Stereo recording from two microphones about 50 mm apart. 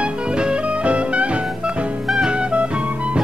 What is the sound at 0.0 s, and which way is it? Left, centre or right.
Music, centre.